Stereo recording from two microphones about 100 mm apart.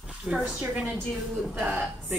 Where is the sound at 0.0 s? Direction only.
10° right (ahead or behind).